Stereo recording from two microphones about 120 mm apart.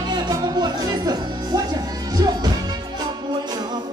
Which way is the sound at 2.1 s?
35° right (ahead or behind).